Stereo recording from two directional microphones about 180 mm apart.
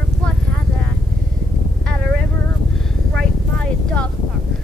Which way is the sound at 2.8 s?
5° left (ahead or behind).